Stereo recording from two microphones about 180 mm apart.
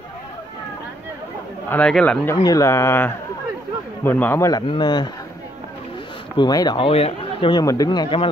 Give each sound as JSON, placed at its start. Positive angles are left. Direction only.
{"t": 1.7, "sound": "a man's voice", "side_deg": 5}
{"t": 2.4, "sound": "a man's voice", "side_deg": 20}
{"t": 6.3, "sound": "speech", "side_deg": 25}